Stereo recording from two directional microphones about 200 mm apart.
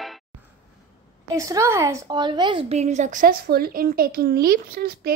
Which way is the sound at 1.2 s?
15° right (ahead or behind).